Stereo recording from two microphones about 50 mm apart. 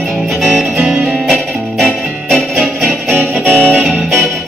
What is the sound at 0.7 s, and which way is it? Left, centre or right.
Music, right.